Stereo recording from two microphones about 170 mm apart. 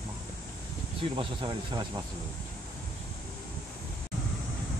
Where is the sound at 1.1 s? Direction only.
30° right (ahead or behind).